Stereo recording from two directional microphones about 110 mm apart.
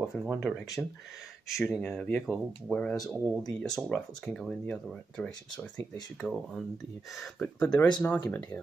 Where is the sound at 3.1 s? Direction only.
Centre (ahead or behind).